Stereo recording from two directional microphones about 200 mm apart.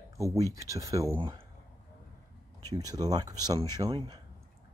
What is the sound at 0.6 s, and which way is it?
Speech, 15° right (ahead or behind).